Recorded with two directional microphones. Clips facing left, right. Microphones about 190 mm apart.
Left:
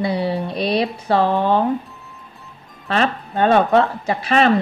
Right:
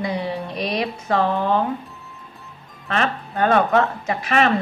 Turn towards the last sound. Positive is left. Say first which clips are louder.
# left 3 dB
turn(degrees=30)  # may be behind; listen again after turning